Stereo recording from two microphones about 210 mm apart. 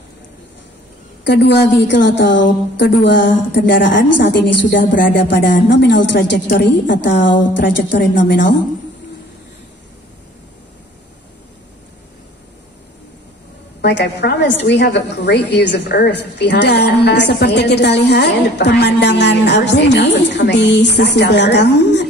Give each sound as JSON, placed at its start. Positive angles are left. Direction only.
{"t": 1.2, "sound": "a woman's voice", "side_deg": 55}
{"t": 13.7, "sound": "a woman's voice", "side_deg": 55}